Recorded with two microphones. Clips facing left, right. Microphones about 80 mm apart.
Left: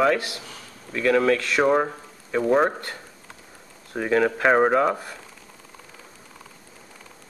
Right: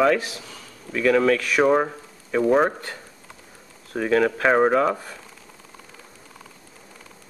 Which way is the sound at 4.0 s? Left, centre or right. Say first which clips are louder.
Right 1 dB; centre.